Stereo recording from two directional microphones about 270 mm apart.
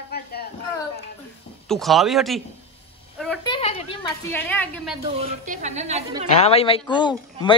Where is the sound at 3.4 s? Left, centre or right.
Centre.